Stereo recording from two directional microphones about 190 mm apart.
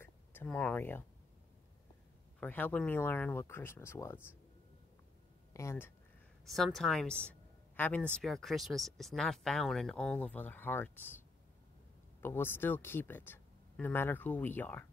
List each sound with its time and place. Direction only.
0.0 s a sound: 10° left (ahead or behind)
2.4 s speech: 10° left (ahead or behind)
5.5 s speech: 15° left (ahead or behind)
6.4 s speech: centre (ahead or behind)
7.7 s a sound: 10° left (ahead or behind)
8.1 s speech: centre (ahead or behind)
12.2 s speech: 10° left (ahead or behind)